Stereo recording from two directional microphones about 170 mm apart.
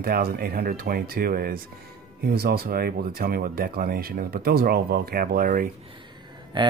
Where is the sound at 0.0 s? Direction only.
60° right (ahead or behind).